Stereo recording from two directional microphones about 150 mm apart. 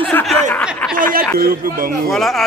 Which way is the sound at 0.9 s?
65° right (ahead or behind).